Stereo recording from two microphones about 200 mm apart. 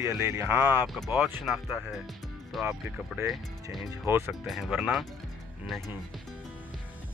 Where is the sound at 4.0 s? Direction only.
Centre (ahead or behind).